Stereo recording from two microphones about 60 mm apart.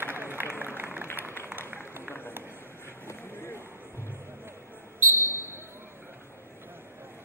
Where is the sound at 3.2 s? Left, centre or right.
Left.